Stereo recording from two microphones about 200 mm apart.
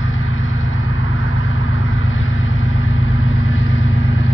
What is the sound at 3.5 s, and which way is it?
Vehicle, 75° left (ahead or behind).